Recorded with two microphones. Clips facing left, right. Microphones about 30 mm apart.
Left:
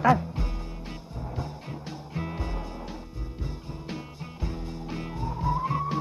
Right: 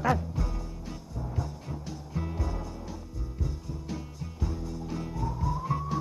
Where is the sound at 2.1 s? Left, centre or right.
Left.